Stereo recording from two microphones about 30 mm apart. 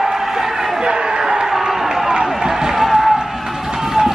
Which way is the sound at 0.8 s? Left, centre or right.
Right.